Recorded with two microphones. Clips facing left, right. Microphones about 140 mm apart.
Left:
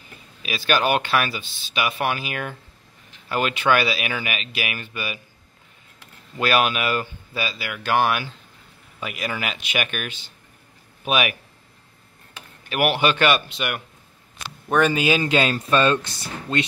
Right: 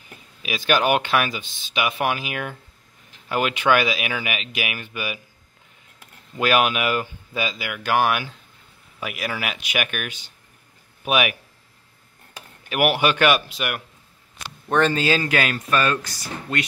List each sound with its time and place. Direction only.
0.4 s speech: 15° right (ahead or behind)
6.4 s speech: 15° right (ahead or behind)
12.6 s speech: 10° right (ahead or behind)
14.7 s speech: 10° left (ahead or behind); by 16.6 s 25° left (ahead or behind)